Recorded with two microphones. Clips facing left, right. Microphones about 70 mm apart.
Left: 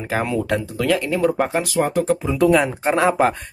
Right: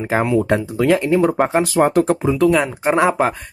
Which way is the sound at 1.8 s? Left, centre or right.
Right.